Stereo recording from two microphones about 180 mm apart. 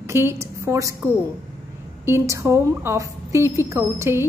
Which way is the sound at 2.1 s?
15° right (ahead or behind).